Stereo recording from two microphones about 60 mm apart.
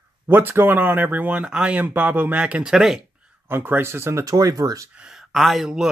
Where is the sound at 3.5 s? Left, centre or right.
Right.